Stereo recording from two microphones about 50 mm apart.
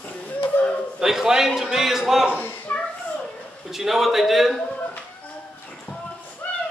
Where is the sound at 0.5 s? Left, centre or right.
Left.